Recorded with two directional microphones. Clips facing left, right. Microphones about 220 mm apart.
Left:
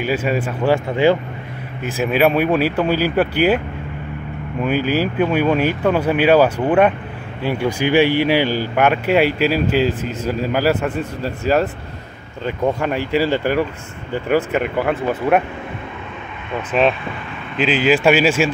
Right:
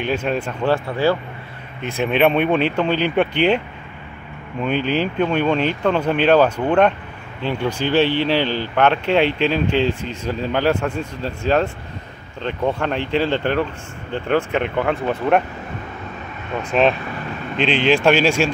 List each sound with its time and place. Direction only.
0.0 s speech: 5° left (ahead or behind)
0.8 s speech: 20° left (ahead or behind)
1.8 s speech: 5° left (ahead or behind)
4.6 s speech: 5° left (ahead or behind)
16.7 s speech: centre (ahead or behind)